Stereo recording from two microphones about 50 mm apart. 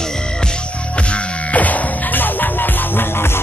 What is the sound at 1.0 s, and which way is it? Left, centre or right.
Music, left.